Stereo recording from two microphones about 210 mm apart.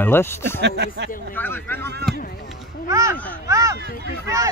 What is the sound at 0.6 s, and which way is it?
Speech, 50° right (ahead or behind).